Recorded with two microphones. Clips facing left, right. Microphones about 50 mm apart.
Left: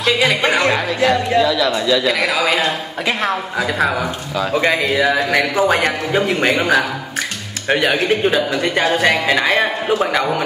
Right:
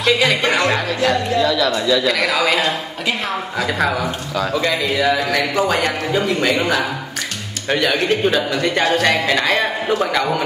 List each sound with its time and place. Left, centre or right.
0.0 s speech: centre
0.7 s a man's voice: centre
4.6 s a man's voice: left; by 10.4 s centre